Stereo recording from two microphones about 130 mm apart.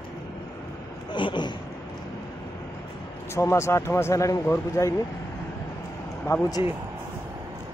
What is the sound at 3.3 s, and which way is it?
Speech, 20° left (ahead or behind).